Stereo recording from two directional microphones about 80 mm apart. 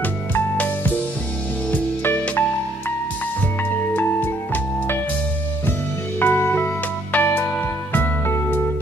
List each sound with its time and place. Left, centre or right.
0.0 s music: left
3.7 s music: left
6.1 s music: left